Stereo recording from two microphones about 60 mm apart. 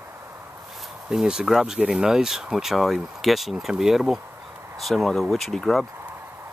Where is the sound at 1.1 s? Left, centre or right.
Centre.